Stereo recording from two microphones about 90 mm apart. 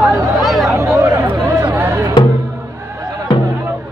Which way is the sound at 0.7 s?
30° right (ahead or behind).